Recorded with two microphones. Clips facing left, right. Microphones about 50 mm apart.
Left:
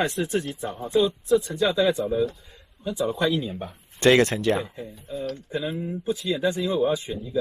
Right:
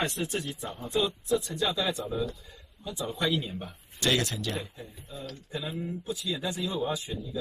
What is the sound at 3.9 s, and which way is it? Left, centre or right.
Speech, left.